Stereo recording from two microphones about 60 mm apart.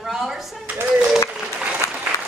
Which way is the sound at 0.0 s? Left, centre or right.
Centre.